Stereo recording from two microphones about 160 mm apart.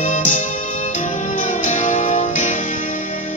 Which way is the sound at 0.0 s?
55° left (ahead or behind).